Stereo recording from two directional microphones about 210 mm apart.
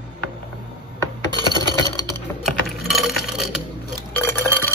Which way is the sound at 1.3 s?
20° left (ahead or behind).